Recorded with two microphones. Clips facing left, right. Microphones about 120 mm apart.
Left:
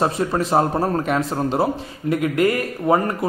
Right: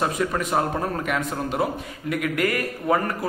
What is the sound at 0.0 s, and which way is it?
A man's voice, 30° left (ahead or behind).